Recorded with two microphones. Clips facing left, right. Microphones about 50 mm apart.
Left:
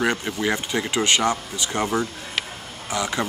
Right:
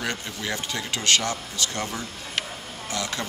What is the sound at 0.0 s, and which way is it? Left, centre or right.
Speech, left.